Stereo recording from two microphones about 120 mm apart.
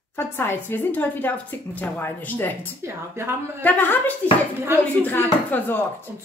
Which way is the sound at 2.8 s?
20° right (ahead or behind).